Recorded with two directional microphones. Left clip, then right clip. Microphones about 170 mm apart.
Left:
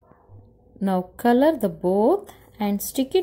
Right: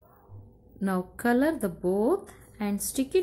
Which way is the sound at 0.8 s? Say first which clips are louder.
Left 6 dB; 20° left (ahead or behind).